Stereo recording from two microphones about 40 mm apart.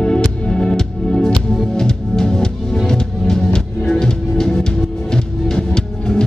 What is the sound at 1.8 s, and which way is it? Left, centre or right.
Music, centre.